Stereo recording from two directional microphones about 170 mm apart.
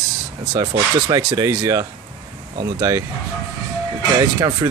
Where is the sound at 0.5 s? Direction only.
25° right (ahead or behind).